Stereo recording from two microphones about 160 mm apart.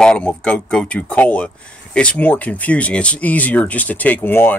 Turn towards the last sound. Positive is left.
turn(degrees=15)  # may be behind; listen again after turning